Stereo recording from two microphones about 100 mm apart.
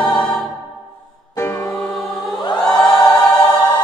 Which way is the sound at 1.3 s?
30° left (ahead or behind).